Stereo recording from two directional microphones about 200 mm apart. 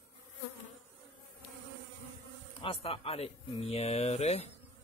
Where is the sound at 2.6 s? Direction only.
30° left (ahead or behind).